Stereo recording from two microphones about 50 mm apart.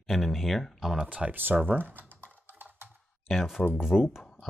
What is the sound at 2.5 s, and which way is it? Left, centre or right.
Typing, right.